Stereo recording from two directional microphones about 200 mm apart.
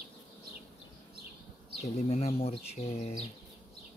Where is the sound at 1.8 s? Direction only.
30° left (ahead or behind).